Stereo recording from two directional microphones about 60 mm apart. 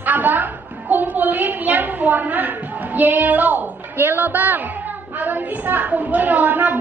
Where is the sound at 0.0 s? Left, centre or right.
Right.